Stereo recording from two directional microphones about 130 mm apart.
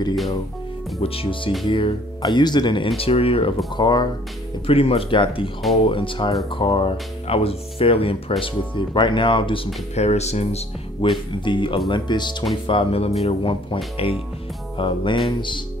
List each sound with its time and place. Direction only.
1.0 s speech: 45° left (ahead or behind)
3.0 s speech: 45° left (ahead or behind)
3.7 s speech: 35° left (ahead or behind)
4.6 s speech: 45° left (ahead or behind)
9.9 s speech: 55° left (ahead or behind)
11.4 s speech: 40° left (ahead or behind)